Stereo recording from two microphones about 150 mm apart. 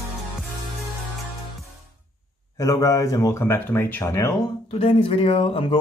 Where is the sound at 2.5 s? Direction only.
20° left (ahead or behind).